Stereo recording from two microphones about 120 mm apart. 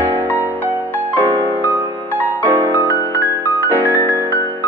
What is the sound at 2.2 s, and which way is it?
Music, 15° right (ahead or behind).